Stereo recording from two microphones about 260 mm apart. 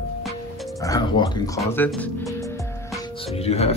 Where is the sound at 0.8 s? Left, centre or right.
Centre.